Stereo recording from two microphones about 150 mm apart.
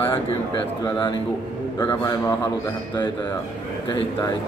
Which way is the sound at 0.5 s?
30° left (ahead or behind).